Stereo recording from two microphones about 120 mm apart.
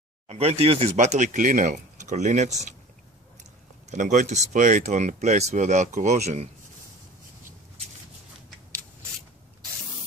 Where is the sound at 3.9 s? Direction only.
90° right; by 6.5 s 65° right (ahead or behind).